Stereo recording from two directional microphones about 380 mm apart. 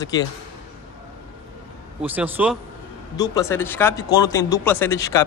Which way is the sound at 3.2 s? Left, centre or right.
Centre.